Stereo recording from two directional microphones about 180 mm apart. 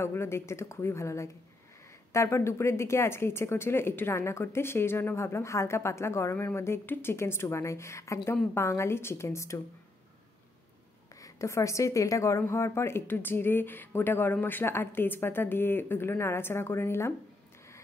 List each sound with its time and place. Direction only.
0.0 s speech: 15° left (ahead or behind)
11.1 s speech: 15° left (ahead or behind)